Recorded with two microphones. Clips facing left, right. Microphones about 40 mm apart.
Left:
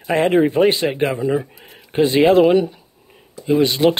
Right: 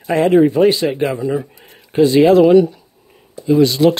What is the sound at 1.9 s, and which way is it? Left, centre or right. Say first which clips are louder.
Speech: right 3 dB; left.